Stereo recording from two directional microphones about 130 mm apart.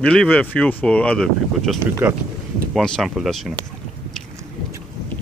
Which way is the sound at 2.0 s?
15° right (ahead or behind).